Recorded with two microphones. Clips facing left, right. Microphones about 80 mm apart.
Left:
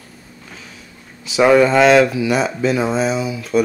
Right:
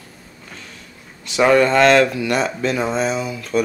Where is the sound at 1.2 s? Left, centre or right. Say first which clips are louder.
Left 2 dB; centre.